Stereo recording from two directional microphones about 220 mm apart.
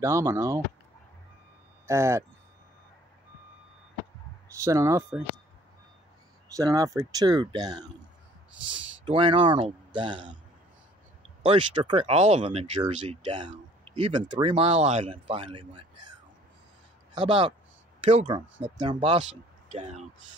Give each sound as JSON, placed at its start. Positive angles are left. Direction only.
{"t": 0.0, "sound": "speech", "side_deg": -15}
{"t": 1.9, "sound": "speech", "side_deg": -15}
{"t": 4.6, "sound": "speech", "side_deg": -15}
{"t": 6.5, "sound": "speech", "side_deg": -15}
{"t": 9.0, "sound": "speech", "side_deg": -25}
{"t": 11.4, "sound": "speech", "side_deg": -20}
{"t": 17.1, "sound": "speech", "side_deg": -20}